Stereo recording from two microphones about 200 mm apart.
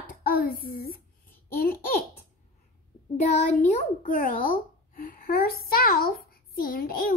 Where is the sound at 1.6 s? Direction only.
45° left (ahead or behind).